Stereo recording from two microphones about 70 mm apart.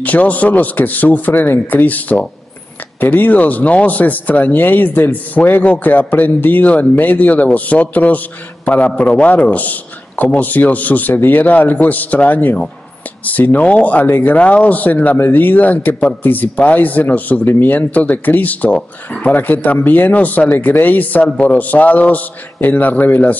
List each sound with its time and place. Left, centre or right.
0.0 s speech: left